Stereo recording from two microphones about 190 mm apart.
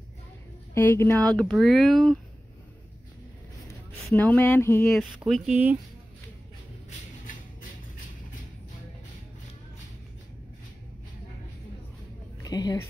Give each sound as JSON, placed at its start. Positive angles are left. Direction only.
{"t": 0.7, "sound": "speech", "side_deg": 10}
{"t": 4.1, "sound": "speech", "side_deg": 10}
{"t": 4.9, "sound": "speech", "side_deg": 0}
{"t": 12.4, "sound": "a woman's voice", "side_deg": 20}